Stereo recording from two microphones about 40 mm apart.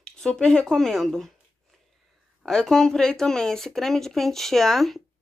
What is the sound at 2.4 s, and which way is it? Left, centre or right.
Speech, centre.